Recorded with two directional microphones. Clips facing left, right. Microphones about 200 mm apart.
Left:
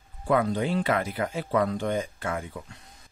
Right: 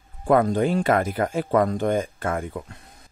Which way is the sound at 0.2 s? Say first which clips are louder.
Right 5 dB; 50° right (ahead or behind).